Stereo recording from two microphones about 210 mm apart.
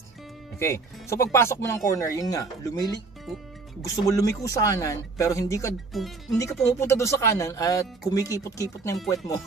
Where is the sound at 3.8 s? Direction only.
15° left (ahead or behind).